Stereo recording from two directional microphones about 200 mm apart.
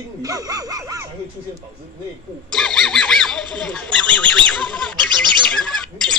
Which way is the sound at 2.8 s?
5° left (ahead or behind).